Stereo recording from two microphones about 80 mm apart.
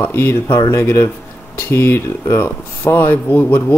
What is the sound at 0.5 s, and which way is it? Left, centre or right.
Speech, left.